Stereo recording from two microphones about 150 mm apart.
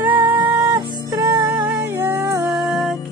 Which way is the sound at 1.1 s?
25° right (ahead or behind).